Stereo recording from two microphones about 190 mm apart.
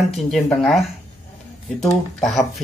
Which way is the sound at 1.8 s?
Centre (ahead or behind).